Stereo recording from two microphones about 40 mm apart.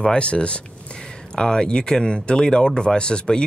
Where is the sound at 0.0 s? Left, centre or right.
Left.